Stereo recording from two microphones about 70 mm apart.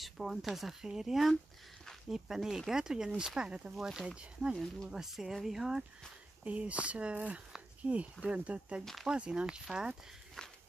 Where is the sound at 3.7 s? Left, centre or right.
Centre.